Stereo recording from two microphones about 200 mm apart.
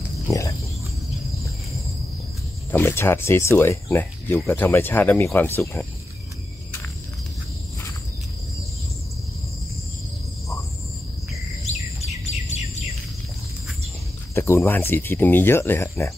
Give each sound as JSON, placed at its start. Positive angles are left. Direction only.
{"t": 0.3, "sound": "pig", "side_deg": 15}
{"t": 2.7, "sound": "speech", "side_deg": 10}
{"t": 14.3, "sound": "speech", "side_deg": 15}